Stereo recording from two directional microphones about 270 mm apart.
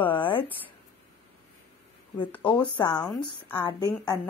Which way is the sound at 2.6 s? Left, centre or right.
Centre.